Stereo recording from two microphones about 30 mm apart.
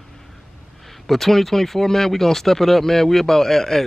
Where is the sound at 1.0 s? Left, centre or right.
Centre.